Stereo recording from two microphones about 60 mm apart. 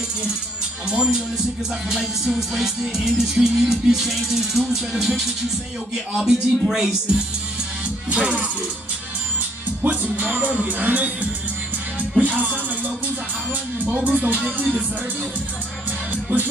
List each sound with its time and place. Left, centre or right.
0.8 s music: centre
8.1 s music: centre
9.8 s music: right
14.1 s music: right
16.1 s music: right